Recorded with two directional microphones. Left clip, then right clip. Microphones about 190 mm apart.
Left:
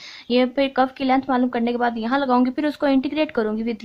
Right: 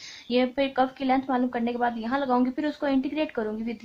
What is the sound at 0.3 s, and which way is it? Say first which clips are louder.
Speech: left 5 dB; 35° left (ahead or behind).